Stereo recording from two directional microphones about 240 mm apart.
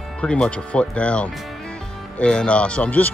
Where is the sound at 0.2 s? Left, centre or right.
Centre.